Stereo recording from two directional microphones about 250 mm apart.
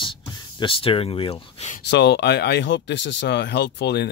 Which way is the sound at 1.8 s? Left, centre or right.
Left.